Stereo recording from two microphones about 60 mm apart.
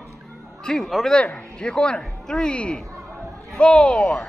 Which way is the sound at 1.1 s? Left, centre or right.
Centre.